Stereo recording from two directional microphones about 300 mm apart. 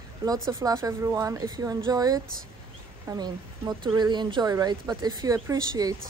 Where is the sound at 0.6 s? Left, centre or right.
Centre.